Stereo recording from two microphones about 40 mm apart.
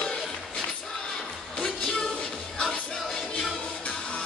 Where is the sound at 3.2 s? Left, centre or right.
Centre.